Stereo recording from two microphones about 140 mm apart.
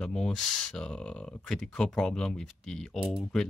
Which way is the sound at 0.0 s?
5° left (ahead or behind).